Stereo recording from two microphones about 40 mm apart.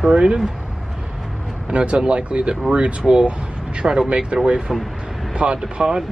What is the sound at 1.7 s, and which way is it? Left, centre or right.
Speech, right.